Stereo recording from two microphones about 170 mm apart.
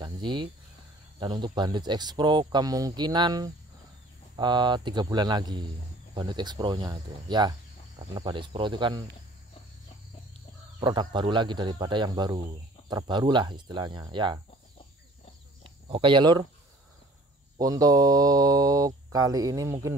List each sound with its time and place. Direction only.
0.0 s cricket: 25° right (ahead or behind)
1.2 s speech: 25° right (ahead or behind)
10.8 s speech: 25° right (ahead or behind)
15.9 s speech: 30° right (ahead or behind)
17.6 s speech: 20° right (ahead or behind)